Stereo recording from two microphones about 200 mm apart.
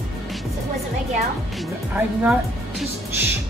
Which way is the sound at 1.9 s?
5° right (ahead or behind).